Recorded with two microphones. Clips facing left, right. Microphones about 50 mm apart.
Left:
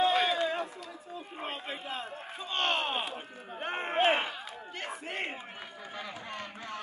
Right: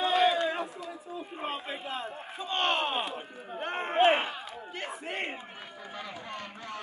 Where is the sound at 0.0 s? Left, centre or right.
Centre.